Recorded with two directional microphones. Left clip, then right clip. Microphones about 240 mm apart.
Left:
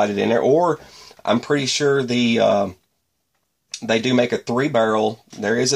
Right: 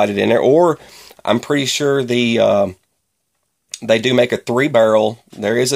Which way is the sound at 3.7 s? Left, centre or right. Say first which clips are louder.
Right 5 dB; right.